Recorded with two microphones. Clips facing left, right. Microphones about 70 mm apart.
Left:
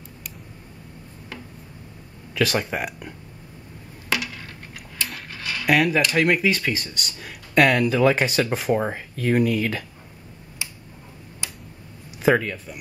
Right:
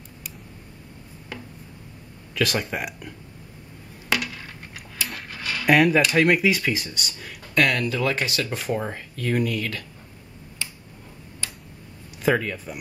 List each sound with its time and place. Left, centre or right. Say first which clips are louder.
2.3 s speech: left 2 dB; centre
5.0 s speech: even; centre
11.4 s tick-tock: even; centre
12.2 s speech: left 3 dB; centre